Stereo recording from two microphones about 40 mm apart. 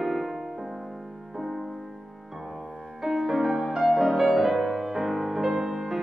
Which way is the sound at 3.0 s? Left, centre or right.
Centre.